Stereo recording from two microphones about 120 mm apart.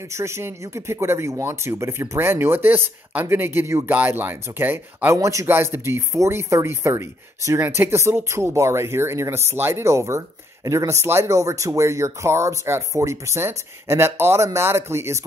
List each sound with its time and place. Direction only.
0.1 s speech: 25° right (ahead or behind)